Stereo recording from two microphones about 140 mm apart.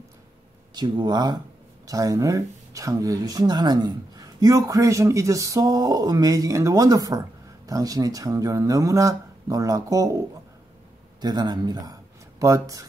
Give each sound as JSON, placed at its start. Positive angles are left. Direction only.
{"t": 0.7, "sound": "speech", "side_deg": -30}